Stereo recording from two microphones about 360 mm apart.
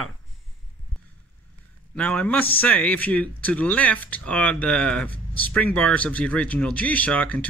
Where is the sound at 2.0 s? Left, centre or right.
Centre.